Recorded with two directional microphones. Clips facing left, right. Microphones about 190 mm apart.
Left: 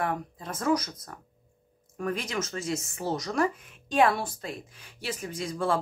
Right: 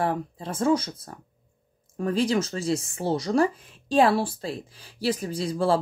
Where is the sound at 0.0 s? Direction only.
30° right (ahead or behind).